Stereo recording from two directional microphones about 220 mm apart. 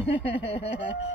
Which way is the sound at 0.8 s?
55° left (ahead or behind).